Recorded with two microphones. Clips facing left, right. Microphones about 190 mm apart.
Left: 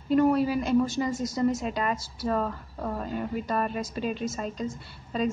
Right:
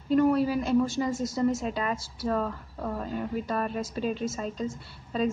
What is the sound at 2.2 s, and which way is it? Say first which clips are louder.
A woman's voice: left 1 dB; 5° left (ahead or behind).